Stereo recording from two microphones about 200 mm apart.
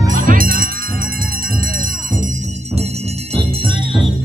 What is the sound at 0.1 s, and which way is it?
Music, 40° right (ahead or behind).